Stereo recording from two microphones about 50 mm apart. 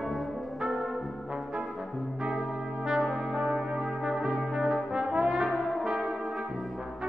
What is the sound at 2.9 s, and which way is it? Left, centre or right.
Brass instrument, centre.